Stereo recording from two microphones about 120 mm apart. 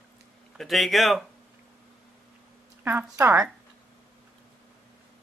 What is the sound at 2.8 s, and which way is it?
Speech, 20° right (ahead or behind).